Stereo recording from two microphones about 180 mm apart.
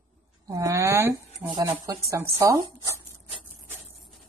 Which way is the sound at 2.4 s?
20° right (ahead or behind).